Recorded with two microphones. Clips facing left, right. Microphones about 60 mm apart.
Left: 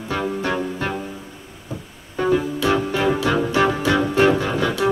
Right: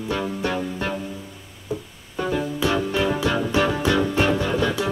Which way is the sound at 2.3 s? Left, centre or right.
Left.